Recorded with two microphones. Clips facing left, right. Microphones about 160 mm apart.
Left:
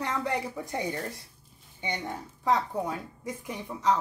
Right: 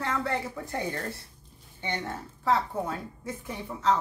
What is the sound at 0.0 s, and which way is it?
A woman's voice, 15° left (ahead or behind).